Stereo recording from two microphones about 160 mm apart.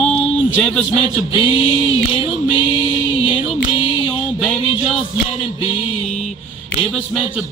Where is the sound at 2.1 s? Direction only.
35° left (ahead or behind).